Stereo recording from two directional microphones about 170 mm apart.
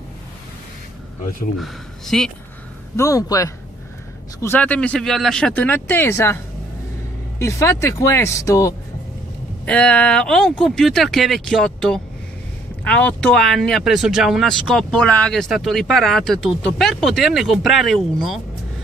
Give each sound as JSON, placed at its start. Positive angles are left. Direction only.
{"t": 1.6, "sound": "speech", "side_deg": 5}
{"t": 3.0, "sound": "a man's voice", "side_deg": 20}
{"t": 9.7, "sound": "speech", "side_deg": 5}